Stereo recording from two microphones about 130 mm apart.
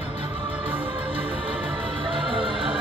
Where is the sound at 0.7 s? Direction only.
45° right (ahead or behind).